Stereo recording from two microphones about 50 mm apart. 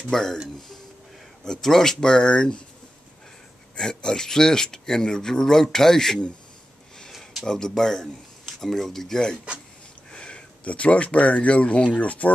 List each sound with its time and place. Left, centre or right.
0.1 s speech: centre
1.4 s speech: centre
3.7 s speech: centre
7.4 s speech: centre; by 12.3 s left